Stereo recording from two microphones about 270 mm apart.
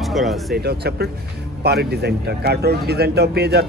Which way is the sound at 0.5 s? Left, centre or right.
Right.